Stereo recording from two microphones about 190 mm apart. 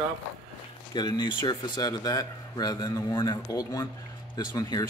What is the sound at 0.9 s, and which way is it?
Speech, 20° left (ahead or behind).